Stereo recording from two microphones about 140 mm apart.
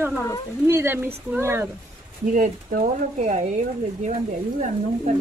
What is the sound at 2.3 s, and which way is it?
Speech, 70° right (ahead or behind).